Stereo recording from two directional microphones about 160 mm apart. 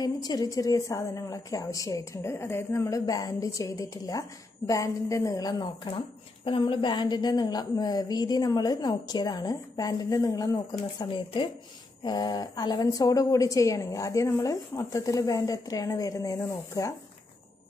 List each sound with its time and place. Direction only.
0.0 s a woman's voice: 25° left (ahead or behind)